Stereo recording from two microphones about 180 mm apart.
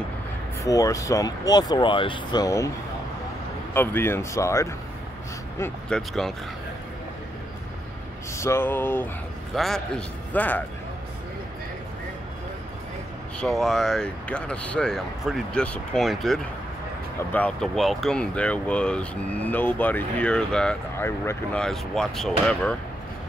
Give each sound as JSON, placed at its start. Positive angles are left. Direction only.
{"t": 0.7, "sound": "speech", "side_deg": 20}
{"t": 3.7, "sound": "speech", "side_deg": 10}
{"t": 5.6, "sound": "speech", "side_deg": 5}
{"t": 8.4, "sound": "speech", "side_deg": 15}
{"t": 13.4, "sound": "speech", "side_deg": 0}